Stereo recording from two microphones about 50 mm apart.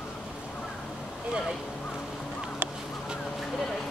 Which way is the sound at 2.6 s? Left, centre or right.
Right.